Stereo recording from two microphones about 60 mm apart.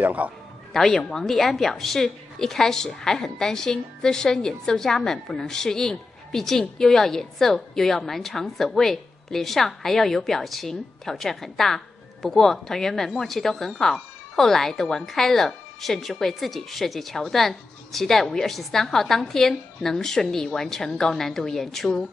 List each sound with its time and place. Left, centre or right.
0.0 s speech: right
0.7 s a woman's voice: centre